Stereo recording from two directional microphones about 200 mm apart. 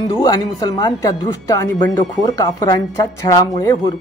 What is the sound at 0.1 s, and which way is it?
Speech, 20° left (ahead or behind).